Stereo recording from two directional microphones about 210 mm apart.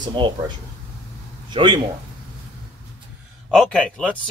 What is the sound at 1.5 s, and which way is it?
Speech, 25° right (ahead or behind).